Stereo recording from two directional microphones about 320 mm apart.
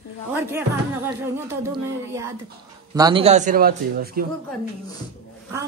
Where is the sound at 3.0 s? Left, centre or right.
Centre.